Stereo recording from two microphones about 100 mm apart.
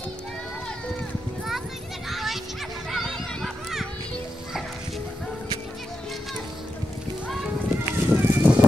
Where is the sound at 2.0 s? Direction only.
Centre (ahead or behind).